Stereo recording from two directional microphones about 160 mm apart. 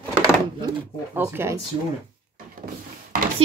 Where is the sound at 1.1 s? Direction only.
15° right (ahead or behind).